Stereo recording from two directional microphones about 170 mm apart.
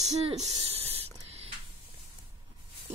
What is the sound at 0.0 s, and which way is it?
Speech, 40° right (ahead or behind).